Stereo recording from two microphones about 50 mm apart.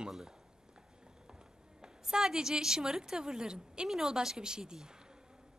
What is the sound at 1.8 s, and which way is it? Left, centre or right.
A woman's voice, centre.